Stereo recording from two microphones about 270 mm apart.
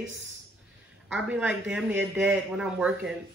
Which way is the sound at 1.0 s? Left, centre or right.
Centre.